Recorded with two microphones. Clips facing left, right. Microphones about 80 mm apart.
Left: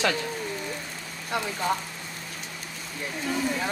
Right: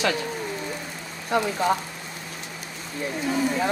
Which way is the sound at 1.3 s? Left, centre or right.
Centre.